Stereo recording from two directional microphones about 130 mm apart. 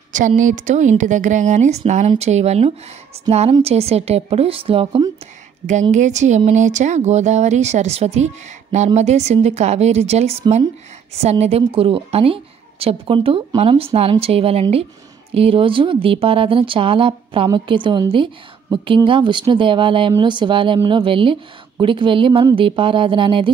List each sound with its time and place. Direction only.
0.4 s a woman's voice: 80° right; by 5.0 s 45° right (ahead or behind)
5.7 s a woman's voice: 65° right (ahead or behind); by 23.5 s 40° right (ahead or behind)